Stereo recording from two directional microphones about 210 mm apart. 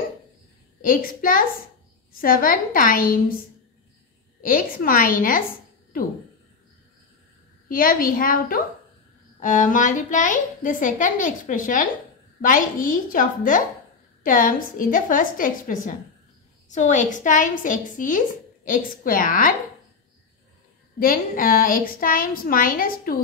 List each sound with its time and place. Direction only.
0.8 s a woman's voice: 40° left (ahead or behind)
4.4 s a woman's voice: 40° left (ahead or behind)
7.6 s a woman's voice: 40° left (ahead or behind)
21.0 s a woman's voice: 40° left (ahead or behind)